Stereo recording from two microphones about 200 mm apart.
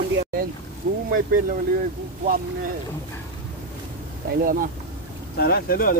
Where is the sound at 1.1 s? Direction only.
45° right (ahead or behind).